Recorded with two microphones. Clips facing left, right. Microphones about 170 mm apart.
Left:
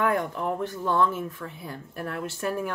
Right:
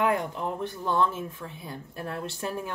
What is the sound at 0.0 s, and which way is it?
Speech, 20° right (ahead or behind).